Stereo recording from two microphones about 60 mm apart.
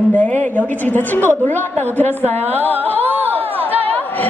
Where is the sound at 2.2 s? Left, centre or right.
Right.